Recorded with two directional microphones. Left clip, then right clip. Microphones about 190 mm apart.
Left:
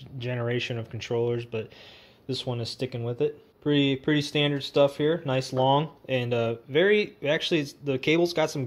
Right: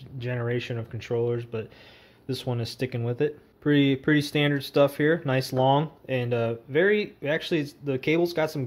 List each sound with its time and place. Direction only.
0.2 s speech: centre (ahead or behind)